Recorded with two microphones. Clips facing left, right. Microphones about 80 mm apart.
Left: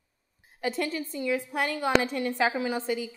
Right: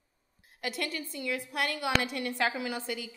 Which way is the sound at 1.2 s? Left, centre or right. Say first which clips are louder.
Left 4 dB; centre.